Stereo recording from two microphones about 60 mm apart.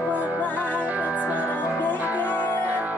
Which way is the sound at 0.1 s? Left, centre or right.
Right.